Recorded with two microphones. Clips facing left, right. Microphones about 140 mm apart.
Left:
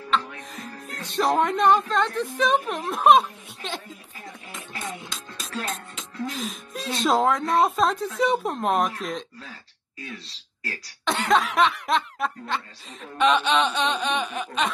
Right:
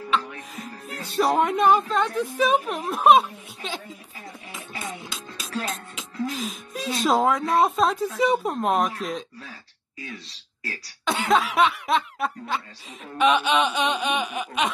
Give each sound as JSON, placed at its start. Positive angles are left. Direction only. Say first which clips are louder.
{"t": 0.1, "sound": "speech", "louder": "even", "side_deg": -5}
{"t": 4.5, "sound": "music", "louder": "even", "side_deg": 0}
{"t": 10.6, "sound": "snicker", "louder": "even", "side_deg": 0}
{"t": 13.2, "sound": "a sound", "louder": "even", "side_deg": -10}